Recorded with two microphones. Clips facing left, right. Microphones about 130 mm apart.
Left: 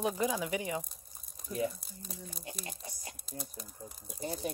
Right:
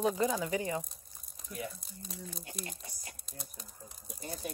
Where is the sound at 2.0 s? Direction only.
5° left (ahead or behind).